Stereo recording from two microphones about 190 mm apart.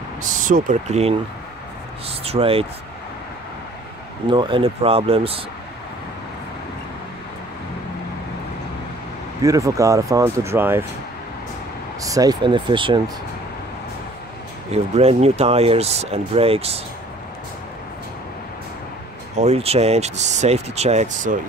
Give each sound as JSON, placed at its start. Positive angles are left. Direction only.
{"t": 0.2, "sound": "speech", "side_deg": -45}
{"t": 4.3, "sound": "speech", "side_deg": -25}
{"t": 9.4, "sound": "speech", "side_deg": -15}
{"t": 12.0, "sound": "speech", "side_deg": -20}
{"t": 14.7, "sound": "speech", "side_deg": -35}
{"t": 19.3, "sound": "speech", "side_deg": -35}